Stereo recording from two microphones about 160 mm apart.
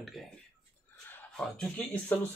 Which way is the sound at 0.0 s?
Centre (ahead or behind).